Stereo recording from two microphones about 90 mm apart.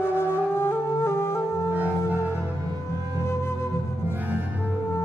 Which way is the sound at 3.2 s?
30° left (ahead or behind).